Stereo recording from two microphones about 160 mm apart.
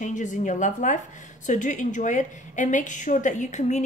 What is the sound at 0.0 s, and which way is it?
A woman's voice, 50° left (ahead or behind).